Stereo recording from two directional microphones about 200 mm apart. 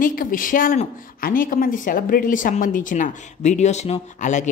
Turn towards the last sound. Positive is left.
turn(degrees=35)  # may be behind; listen again after turning